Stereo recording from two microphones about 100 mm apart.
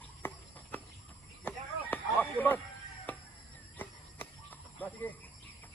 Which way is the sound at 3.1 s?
15° left (ahead or behind).